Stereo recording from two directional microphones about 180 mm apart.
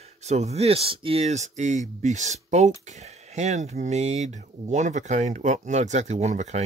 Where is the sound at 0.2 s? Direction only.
40° right (ahead or behind).